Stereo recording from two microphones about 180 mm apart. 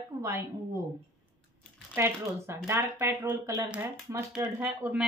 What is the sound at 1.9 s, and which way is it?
A woman's voice, 15° right (ahead or behind).